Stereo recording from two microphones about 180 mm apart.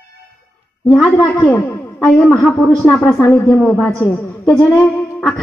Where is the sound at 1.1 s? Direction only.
10° left (ahead or behind).